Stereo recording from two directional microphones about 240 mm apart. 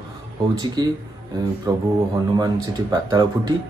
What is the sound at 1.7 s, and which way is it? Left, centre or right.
Speech, centre.